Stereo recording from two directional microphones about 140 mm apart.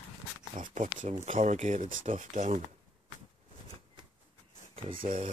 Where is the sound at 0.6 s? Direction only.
65° right (ahead or behind).